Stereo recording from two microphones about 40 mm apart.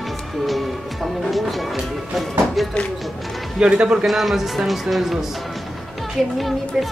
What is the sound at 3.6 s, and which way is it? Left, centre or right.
Speech, right.